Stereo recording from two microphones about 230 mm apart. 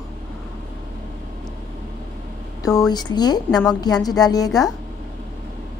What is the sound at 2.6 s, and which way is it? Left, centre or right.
A woman's voice, centre.